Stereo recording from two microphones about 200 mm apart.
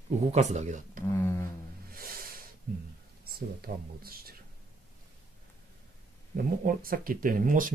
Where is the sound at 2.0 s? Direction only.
45° right (ahead or behind).